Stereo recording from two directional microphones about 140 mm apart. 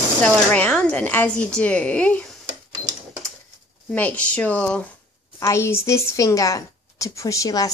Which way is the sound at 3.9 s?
10° left (ahead or behind).